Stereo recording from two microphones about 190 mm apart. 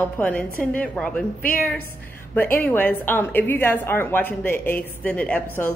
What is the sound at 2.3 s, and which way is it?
A woman's voice, 10° left (ahead or behind).